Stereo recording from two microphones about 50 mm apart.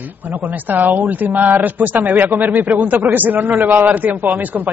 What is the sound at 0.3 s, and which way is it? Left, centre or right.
A man's voice, right.